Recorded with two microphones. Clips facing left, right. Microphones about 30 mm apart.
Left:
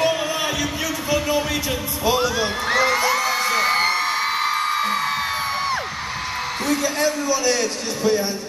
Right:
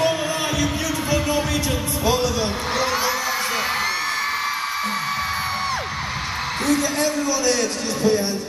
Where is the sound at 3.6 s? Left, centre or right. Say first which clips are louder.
Left 4 dB; centre.